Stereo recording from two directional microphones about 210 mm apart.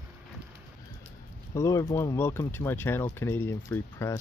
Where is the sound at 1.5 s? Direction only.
15° left (ahead or behind).